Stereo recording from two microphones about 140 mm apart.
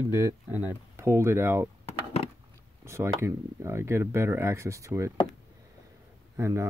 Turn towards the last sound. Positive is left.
turn(degrees=-20)  # may be behind; listen again after turning